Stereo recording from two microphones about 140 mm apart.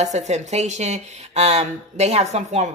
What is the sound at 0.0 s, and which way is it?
Speech, 55° right (ahead or behind).